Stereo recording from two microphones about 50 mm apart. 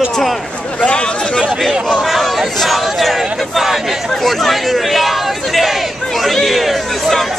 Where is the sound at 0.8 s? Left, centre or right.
Left.